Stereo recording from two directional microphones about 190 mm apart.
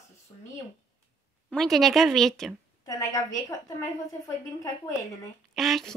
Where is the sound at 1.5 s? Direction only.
Centre (ahead or behind).